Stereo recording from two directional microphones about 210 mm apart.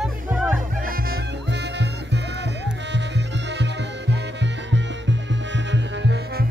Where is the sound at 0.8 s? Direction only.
45° right (ahead or behind).